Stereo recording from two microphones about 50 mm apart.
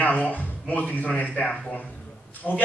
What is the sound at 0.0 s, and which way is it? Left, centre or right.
Speech, left.